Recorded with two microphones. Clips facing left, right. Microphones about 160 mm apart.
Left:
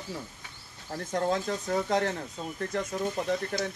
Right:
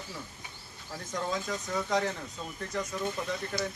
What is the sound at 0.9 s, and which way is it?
Speech, 55° left (ahead or behind).